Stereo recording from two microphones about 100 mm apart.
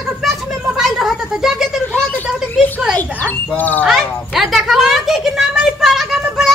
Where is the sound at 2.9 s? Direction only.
15° left (ahead or behind).